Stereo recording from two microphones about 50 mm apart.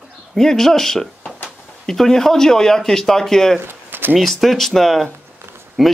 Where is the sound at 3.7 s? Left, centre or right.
Right.